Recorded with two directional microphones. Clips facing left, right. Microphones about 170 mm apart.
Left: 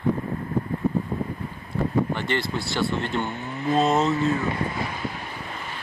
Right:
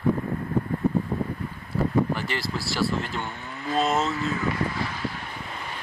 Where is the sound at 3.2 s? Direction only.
25° left (ahead or behind).